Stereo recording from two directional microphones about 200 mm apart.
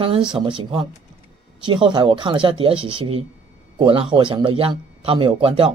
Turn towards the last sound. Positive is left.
turn(degrees=-25)  # may be behind; listen again after turning